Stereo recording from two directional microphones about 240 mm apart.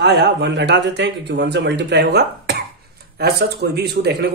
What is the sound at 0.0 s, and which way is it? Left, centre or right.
Speech, right.